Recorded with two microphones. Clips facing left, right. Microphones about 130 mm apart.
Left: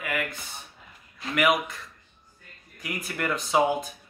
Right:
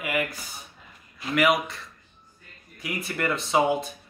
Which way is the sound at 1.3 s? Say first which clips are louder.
Right 1 dB; centre (ahead or behind).